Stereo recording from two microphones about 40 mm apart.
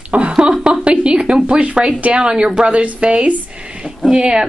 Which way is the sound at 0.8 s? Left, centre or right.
Right.